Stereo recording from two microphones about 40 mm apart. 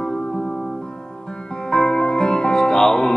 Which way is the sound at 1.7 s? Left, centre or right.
Centre.